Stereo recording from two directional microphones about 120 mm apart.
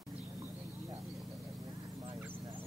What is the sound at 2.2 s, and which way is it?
Duck, 15° right (ahead or behind).